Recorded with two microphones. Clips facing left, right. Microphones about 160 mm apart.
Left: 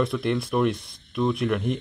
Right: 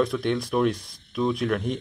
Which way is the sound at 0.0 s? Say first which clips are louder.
Even; centre (ahead or behind).